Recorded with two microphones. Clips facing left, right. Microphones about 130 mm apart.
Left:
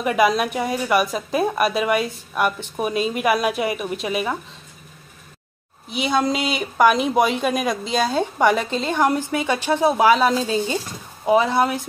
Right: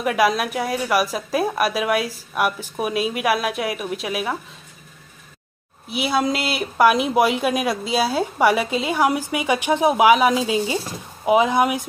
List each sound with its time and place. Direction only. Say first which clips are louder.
0.0 s speech: left 1 dB; centre (ahead or behind)
5.9 s speech: even; 5° right (ahead or behind)